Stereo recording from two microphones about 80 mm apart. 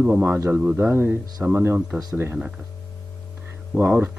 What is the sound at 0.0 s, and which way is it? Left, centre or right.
Speech, right.